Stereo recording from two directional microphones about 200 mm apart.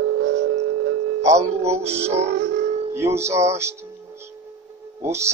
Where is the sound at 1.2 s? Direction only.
15° right (ahead or behind).